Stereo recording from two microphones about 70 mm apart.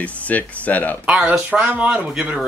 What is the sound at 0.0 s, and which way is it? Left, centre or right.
Speech, left.